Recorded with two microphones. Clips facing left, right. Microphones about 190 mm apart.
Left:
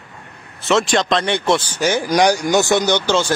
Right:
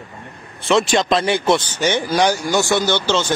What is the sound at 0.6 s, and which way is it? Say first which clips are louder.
Speech: even; centre (ahead or behind).